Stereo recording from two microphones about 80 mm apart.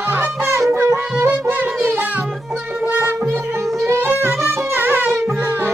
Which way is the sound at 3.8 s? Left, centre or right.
Right.